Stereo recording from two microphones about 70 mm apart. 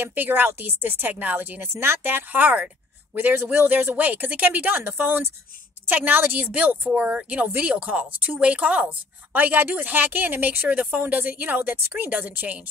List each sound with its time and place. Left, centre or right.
0.0 s speech: right